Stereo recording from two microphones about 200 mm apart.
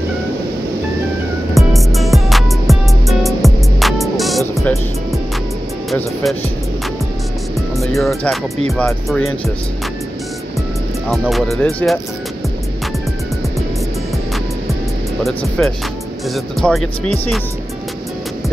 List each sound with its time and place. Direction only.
1.5 s music: centre (ahead or behind)
5.9 s speech: centre (ahead or behind)
7.7 s speech: centre (ahead or behind)
11.1 s speech: centre (ahead or behind)
15.2 s speech: centre (ahead or behind)